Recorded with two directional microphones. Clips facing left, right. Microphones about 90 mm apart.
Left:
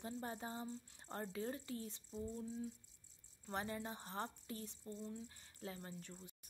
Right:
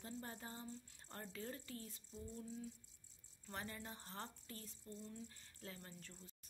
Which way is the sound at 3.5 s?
20° left (ahead or behind).